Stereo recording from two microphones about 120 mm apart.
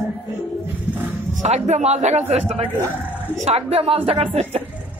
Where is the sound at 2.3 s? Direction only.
60° right (ahead or behind).